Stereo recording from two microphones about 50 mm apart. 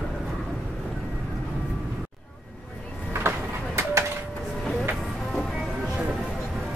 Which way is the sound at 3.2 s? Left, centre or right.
Right.